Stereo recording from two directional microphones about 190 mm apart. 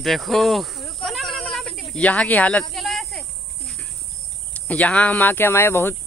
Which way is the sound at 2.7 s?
Centre (ahead or behind).